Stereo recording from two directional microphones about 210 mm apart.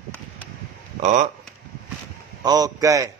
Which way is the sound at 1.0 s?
35° right (ahead or behind).